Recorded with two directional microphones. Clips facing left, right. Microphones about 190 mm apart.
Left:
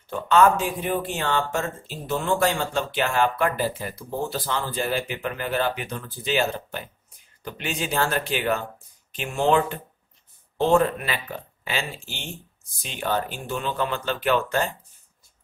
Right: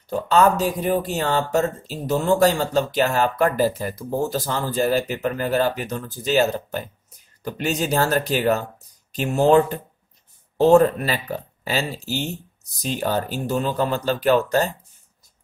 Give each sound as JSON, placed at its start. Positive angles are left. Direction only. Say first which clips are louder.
{"t": 0.1, "sound": "speech", "louder": "right 1 dB", "side_deg": -40}